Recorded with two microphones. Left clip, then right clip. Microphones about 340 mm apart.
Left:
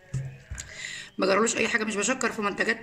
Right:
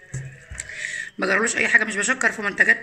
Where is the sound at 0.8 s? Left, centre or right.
Left.